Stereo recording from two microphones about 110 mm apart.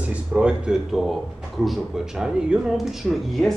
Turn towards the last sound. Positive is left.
turn(degrees=0)  # may be behind; listen again after turning